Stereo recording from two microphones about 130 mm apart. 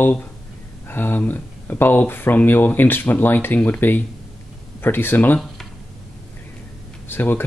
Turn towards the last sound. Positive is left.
turn(degrees=15)  # may be behind; listen again after turning